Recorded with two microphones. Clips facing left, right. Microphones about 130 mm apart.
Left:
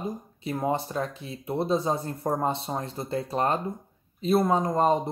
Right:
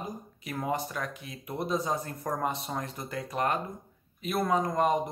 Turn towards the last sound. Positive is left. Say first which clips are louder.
# left 3 dB
turn(degrees=30)  # may be behind; listen again after turning